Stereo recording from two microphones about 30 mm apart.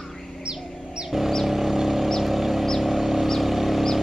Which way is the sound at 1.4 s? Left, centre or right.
Centre.